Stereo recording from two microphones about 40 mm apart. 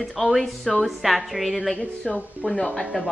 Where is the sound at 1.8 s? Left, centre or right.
Left.